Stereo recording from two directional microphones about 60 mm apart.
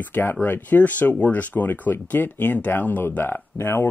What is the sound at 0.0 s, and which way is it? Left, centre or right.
Speech, left.